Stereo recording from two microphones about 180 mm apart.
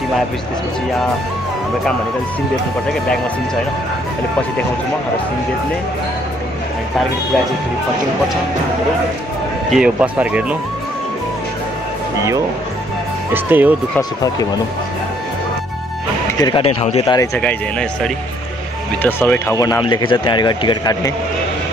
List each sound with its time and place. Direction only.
9.7 s speech: 5° right (ahead or behind)
13.3 s speech: 10° right (ahead or behind)
16.3 s speech: 20° left (ahead or behind)
17.4 s speech: 5° left (ahead or behind); by 21.1 s 25° left (ahead or behind)